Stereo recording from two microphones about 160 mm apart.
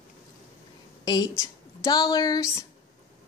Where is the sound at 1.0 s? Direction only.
25° left (ahead or behind).